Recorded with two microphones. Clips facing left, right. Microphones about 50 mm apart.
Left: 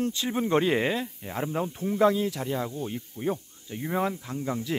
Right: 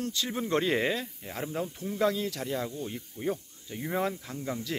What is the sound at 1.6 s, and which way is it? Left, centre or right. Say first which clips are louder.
Speech: left 6 dB; left.